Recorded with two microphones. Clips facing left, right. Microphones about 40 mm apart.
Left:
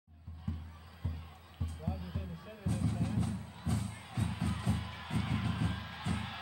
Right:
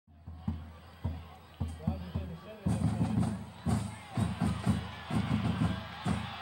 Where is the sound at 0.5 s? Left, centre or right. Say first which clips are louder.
Right 4 dB; right.